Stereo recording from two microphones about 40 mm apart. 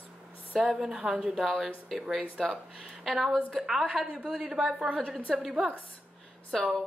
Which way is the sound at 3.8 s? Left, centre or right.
Right.